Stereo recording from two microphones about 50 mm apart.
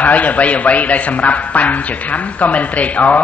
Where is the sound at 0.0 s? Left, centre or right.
Left.